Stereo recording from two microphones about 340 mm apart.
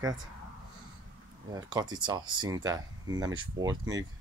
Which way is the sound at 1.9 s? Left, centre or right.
Centre.